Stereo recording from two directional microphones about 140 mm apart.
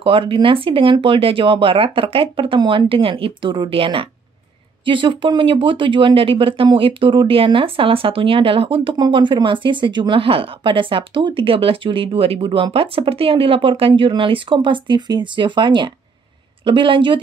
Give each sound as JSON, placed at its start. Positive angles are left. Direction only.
{"t": 0.0, "sound": "speech", "side_deg": -40}